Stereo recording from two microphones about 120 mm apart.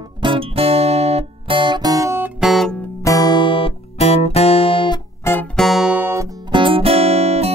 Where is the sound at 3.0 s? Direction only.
30° left (ahead or behind); by 4.9 s 45° left (ahead or behind).